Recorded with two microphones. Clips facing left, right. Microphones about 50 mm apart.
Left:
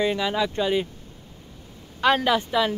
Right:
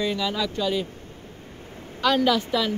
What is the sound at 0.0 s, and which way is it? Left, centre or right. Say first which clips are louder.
Speech: left 2 dB; left.